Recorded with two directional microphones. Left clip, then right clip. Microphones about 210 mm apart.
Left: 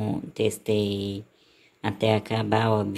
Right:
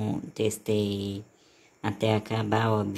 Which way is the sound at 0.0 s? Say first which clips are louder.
Left 3 dB; 5° left (ahead or behind).